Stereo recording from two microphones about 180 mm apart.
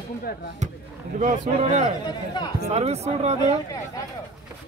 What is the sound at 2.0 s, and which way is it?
Speech, 25° left (ahead or behind).